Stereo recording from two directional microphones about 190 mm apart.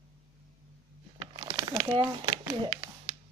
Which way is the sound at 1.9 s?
25° right (ahead or behind).